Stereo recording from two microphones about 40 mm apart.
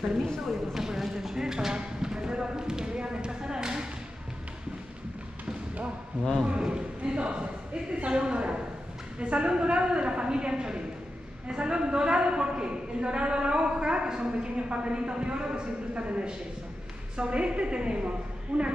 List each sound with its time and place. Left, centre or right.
0.5 s clip-clop: centre
6.4 s a sound: right
7.2 s a woman's voice: right
18.5 s a woman's voice: right